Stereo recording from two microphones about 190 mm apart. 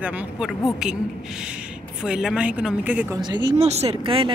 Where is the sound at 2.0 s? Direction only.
5° right (ahead or behind).